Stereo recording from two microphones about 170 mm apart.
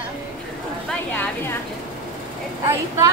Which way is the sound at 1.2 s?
15° left (ahead or behind).